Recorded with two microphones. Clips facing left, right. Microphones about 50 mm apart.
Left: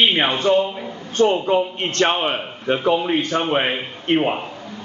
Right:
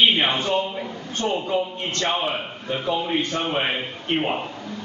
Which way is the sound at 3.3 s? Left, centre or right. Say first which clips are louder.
Left 5 dB; left.